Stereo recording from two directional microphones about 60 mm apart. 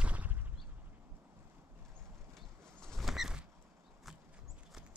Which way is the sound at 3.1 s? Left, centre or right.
Centre.